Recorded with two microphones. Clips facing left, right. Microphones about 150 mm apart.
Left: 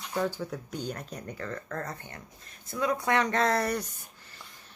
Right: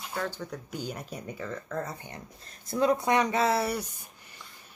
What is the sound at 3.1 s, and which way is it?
Speech, 10° right (ahead or behind).